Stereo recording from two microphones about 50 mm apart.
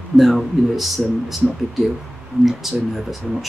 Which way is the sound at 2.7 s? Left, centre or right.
Centre.